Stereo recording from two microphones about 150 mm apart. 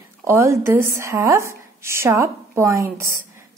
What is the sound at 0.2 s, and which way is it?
A woman's voice, 20° right (ahead or behind).